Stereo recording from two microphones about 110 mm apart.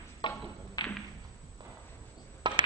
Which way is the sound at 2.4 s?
45° right (ahead or behind).